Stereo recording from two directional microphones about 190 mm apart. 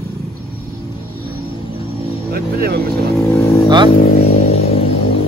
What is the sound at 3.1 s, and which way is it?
Vehicle, 10° left (ahead or behind).